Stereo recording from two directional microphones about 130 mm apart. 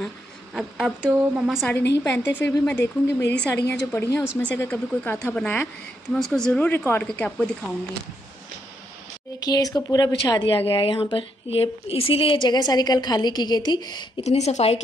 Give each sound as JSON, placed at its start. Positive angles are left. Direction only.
{"t": 0.6, "sound": "speech", "side_deg": 0}
{"t": 1.0, "sound": "speech", "side_deg": -10}
{"t": 1.7, "sound": "a woman's voice", "side_deg": 15}
{"t": 6.7, "sound": "a woman's voice", "side_deg": 15}
{"t": 9.4, "sound": "a woman's voice", "side_deg": 30}
{"t": 10.5, "sound": "a woman's voice", "side_deg": 45}
{"t": 14.2, "sound": "speech", "side_deg": 60}